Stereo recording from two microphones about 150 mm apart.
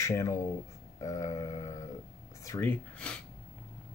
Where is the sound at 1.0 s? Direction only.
20° left (ahead or behind).